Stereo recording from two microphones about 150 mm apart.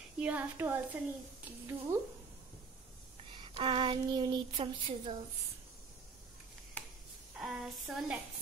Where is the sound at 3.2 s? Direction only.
35° right (ahead or behind).